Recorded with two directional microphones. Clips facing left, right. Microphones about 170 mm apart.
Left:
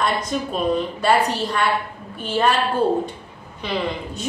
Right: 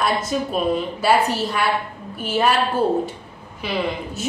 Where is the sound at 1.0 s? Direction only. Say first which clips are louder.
Right 1 dB; 5° right (ahead or behind).